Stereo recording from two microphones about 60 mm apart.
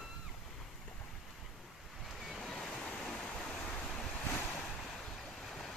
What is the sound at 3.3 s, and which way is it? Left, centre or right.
Waves, left.